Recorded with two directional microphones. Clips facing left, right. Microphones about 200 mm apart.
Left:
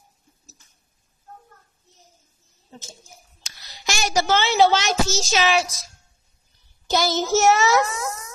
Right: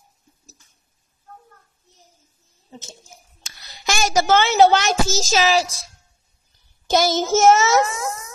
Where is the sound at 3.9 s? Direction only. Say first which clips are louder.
Right 4 dB; 50° right (ahead or behind).